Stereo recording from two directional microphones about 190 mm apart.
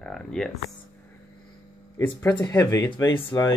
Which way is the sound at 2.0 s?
15° left (ahead or behind).